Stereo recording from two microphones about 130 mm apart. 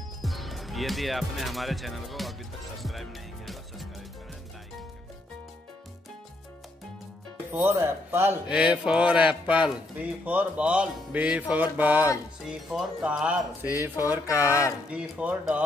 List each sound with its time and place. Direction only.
0.2 s speech: centre (ahead or behind)
2.8 s music: centre (ahead or behind)
7.5 s a man's voice: 20° right (ahead or behind)